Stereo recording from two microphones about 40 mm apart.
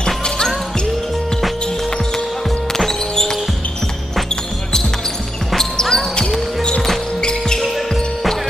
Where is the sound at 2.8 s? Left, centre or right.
Centre.